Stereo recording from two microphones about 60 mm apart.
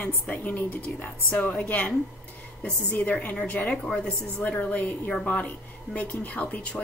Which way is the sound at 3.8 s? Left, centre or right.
Centre.